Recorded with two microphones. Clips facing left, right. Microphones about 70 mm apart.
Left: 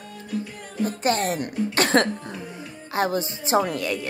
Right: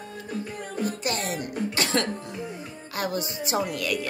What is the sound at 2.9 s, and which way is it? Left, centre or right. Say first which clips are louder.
A woman's voice: left 5 dB; left.